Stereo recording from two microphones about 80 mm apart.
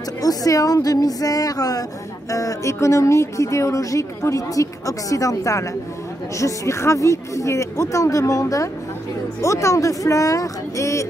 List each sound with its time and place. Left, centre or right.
0.2 s speech: left